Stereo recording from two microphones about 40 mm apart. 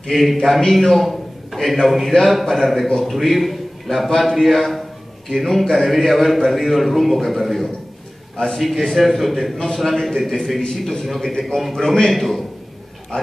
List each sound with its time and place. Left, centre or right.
0.1 s a man's voice: centre
13.1 s speech: left